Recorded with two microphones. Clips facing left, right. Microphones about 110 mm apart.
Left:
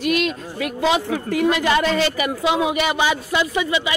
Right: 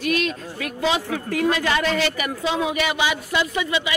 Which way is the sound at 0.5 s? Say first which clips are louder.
Left 5 dB; 20° left (ahead or behind).